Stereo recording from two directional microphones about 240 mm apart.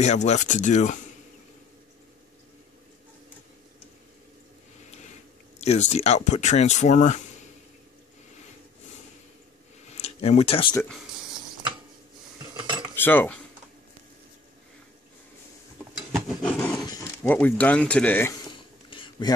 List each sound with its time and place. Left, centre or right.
0.0 s speech: left
5.6 s speech: left
9.8 s a sound: left
10.7 s speech: centre
12.4 s cutlery: centre
12.9 s cutlery: centre
16.4 s roaring cats: centre
16.8 s speech: centre
18.9 s a sound: centre